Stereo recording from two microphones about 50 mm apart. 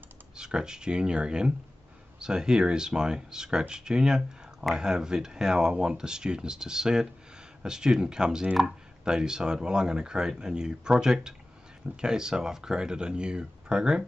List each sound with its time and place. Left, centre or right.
0.4 s speech: centre